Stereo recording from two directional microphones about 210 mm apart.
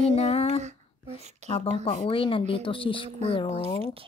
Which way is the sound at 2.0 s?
25° left (ahead or behind).